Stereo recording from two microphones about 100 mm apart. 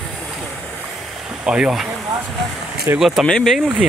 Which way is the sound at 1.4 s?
10° right (ahead or behind).